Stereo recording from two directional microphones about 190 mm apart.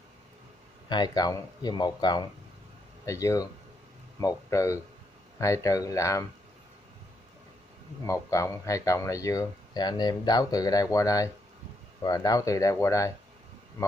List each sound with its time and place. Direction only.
0.8 s speech: 25° left (ahead or behind)
8.1 s speech: 15° left (ahead or behind)